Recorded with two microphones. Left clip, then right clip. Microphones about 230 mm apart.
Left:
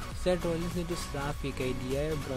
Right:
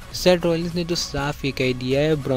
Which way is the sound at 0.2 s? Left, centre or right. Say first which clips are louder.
Right 12 dB; right.